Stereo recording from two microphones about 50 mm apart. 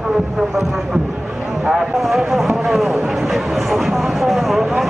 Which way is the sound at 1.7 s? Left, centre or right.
Centre.